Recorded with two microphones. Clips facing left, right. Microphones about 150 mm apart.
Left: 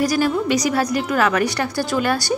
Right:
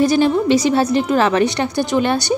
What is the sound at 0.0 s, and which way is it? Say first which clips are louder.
A woman's voice: right 5 dB; 25° right (ahead or behind).